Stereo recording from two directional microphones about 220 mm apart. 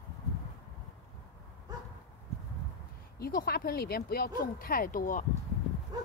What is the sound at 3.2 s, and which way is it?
A woman's voice, 40° left (ahead or behind).